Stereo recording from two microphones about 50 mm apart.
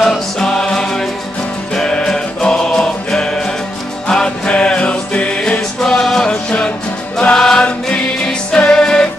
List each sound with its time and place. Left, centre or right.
0.1 s music: centre
5.8 s music: centre